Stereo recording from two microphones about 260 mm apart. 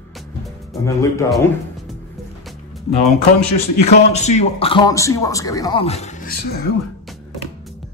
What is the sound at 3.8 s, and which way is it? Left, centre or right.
A man's voice, left.